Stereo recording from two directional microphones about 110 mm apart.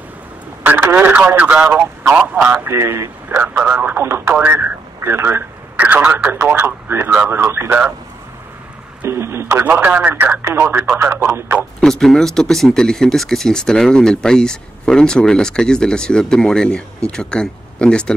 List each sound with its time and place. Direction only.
0.7 s speech: 15° right (ahead or behind)
3.3 s speech: 15° right (ahead or behind)
9.0 s speech: 25° right (ahead or behind)
11.8 s speech: 5° left (ahead or behind)